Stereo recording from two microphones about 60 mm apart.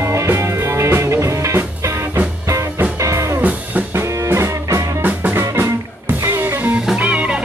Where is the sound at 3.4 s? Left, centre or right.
Right.